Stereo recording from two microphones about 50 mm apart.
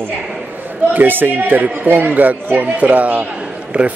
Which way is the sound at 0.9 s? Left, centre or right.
Right.